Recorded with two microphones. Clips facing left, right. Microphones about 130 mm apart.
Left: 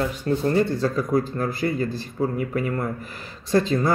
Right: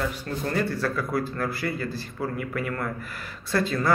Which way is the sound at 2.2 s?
35° left (ahead or behind).